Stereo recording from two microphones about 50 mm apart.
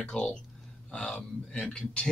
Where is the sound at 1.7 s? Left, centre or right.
Left.